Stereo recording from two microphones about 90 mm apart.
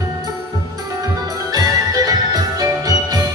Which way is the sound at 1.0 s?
40° right (ahead or behind).